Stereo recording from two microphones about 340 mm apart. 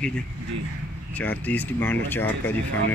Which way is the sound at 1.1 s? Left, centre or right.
Centre.